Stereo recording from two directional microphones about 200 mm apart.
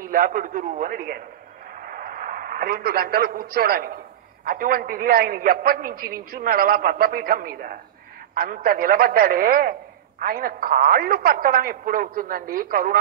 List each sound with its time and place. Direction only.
0.1 s a man's voice: 45° right (ahead or behind)